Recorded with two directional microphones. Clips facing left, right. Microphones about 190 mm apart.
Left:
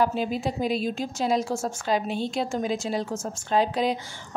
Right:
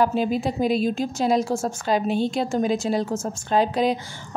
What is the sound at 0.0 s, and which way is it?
A woman's voice, 50° right (ahead or behind).